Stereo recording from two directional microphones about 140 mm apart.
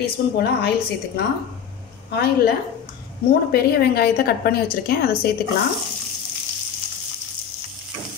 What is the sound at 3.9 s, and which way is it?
A woman's voice, 90° left.